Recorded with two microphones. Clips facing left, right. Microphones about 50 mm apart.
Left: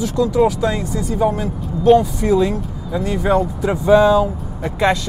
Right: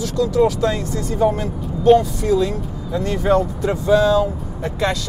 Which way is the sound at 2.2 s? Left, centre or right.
Centre.